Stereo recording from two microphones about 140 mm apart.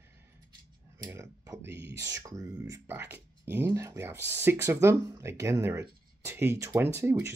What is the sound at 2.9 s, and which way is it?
Speech, 15° right (ahead or behind).